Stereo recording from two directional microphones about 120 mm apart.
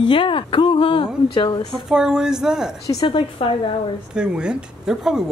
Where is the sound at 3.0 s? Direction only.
50° left (ahead or behind).